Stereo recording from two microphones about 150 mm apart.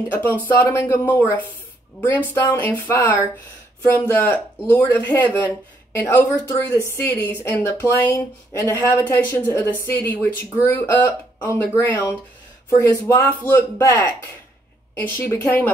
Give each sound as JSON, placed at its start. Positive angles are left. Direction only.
{"t": 0.1, "sound": "speech", "side_deg": 10}